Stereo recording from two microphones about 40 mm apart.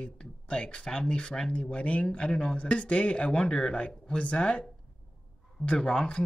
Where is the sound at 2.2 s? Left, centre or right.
Left.